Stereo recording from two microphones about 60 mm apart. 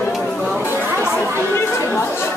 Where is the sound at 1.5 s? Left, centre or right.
Left.